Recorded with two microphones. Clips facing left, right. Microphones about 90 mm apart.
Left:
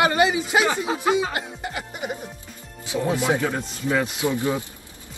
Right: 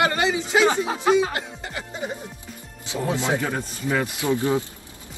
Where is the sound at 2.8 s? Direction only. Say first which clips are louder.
Left 2 dB; 25° right (ahead or behind).